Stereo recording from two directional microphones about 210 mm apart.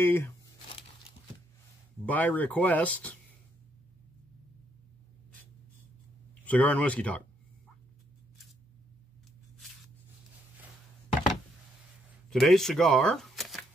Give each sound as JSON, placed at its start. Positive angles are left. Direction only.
{"t": 0.0, "sound": "speech", "side_deg": 10}
{"t": 2.0, "sound": "speech", "side_deg": 10}
{"t": 6.4, "sound": "speech", "side_deg": 5}
{"t": 12.3, "sound": "speech", "side_deg": 0}